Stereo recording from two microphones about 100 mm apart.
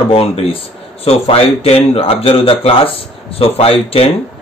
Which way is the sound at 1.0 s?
80° left.